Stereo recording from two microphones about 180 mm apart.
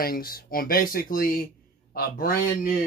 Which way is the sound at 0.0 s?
55° left (ahead or behind).